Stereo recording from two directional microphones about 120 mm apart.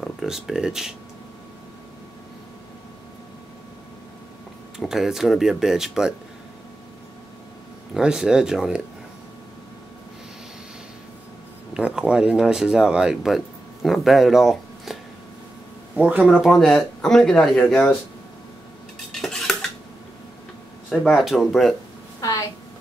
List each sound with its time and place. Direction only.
0.0 s speech: 5° right (ahead or behind)
4.7 s speech: 5° right (ahead or behind)
7.9 s speech: 5° right (ahead or behind)
11.7 s speech: 5° right (ahead or behind)
16.0 s speech: 10° right (ahead or behind)
16.4 s speech: 5° left (ahead or behind)
19.2 s cutlery: 5° left (ahead or behind)
21.1 s speech: centre (ahead or behind)
22.2 s a sound: 25° left (ahead or behind)